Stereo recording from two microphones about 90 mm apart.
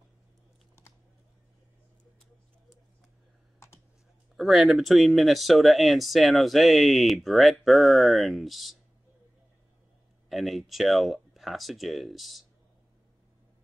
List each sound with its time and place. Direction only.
3.5 s computer keyboard: 30° left (ahead or behind)
4.4 s speech: centre (ahead or behind)
10.3 s speech: centre (ahead or behind)